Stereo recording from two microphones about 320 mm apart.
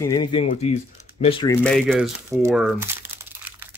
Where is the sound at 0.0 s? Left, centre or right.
Centre.